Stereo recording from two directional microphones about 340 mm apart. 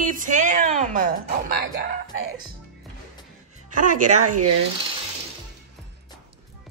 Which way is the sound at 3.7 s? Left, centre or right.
Right.